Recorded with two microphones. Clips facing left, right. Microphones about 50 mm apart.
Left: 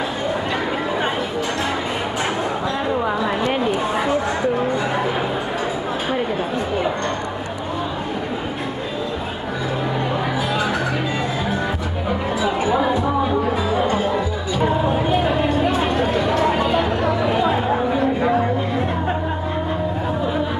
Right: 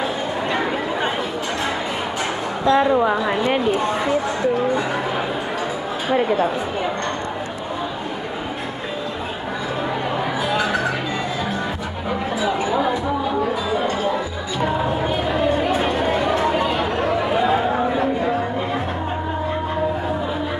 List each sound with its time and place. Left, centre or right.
2.8 s a woman's voice: centre